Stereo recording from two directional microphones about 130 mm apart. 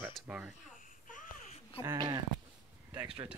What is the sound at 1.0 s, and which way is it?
Babbling, 85° left.